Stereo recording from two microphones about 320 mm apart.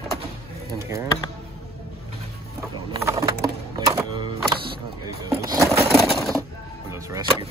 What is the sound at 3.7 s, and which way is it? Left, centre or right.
Music, centre.